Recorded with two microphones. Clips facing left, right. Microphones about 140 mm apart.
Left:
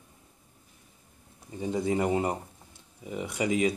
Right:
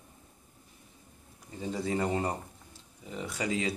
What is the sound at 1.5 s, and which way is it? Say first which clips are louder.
Speech: left 4 dB; 20° left (ahead or behind).